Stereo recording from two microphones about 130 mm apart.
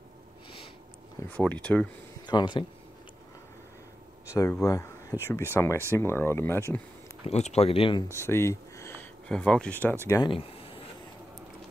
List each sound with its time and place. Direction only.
1.3 s speech: 10° left (ahead or behind)
2.2 s speech: 35° left (ahead or behind)
4.3 s speech: 25° left (ahead or behind)
7.2 s speech: 55° left (ahead or behind)
8.1 s speech: 20° left (ahead or behind)
9.3 s speech: 5° left (ahead or behind)
10.2 s speech: 45° left (ahead or behind)